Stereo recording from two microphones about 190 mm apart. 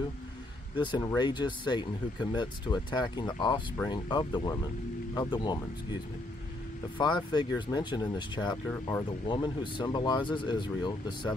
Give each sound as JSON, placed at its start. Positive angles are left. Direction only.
{"t": 0.7, "sound": "speech", "side_deg": 20}
{"t": 7.0, "sound": "speech", "side_deg": 25}
{"t": 9.3, "sound": "speech", "side_deg": 25}